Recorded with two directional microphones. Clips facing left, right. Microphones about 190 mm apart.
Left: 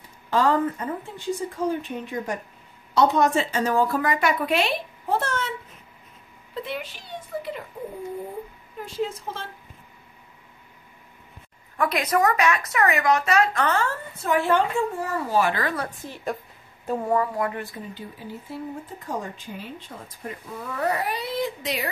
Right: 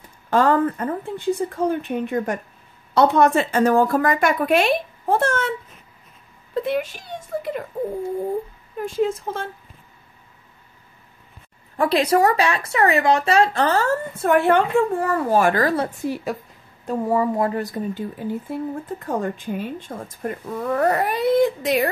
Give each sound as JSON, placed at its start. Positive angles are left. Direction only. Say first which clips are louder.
{"t": 0.3, "sound": "a woman's voice", "louder": "right 4 dB", "side_deg": -55}
{"t": 6.5, "sound": "speech", "louder": "right 9 dB", "side_deg": -50}
{"t": 8.8, "sound": "speech", "louder": "right 7 dB", "side_deg": -50}
{"t": 11.7, "sound": "speech", "louder": "right 5 dB", "side_deg": -30}
{"t": 14.2, "sound": "speech", "louder": "right 4 dB", "side_deg": -60}
{"t": 15.7, "sound": "a woman's voice", "louder": "right 8 dB", "side_deg": -25}
{"t": 16.8, "sound": "speech", "louder": "right 2 dB", "side_deg": 0}
{"t": 17.3, "sound": "speech", "louder": "right 6 dB", "side_deg": -30}